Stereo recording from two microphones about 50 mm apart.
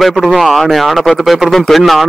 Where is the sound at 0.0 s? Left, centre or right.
Centre.